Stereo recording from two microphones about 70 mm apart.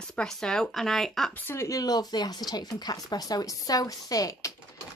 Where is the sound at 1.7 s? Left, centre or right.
Left.